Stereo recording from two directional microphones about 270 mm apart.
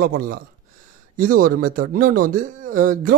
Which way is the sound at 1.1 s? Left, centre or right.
Right.